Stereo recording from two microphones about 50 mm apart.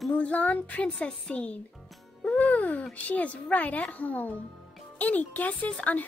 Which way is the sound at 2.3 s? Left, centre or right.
Left.